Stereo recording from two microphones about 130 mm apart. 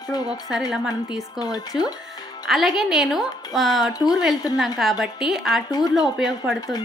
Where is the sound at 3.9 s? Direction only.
30° left (ahead or behind).